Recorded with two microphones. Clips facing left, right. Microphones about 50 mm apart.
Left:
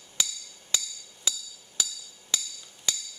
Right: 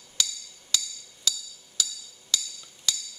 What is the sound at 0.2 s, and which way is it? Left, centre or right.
Percussion, left.